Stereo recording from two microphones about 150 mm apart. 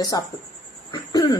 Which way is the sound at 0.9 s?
25° left (ahead or behind).